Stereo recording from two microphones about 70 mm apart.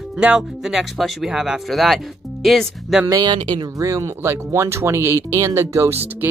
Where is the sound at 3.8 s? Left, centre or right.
Right.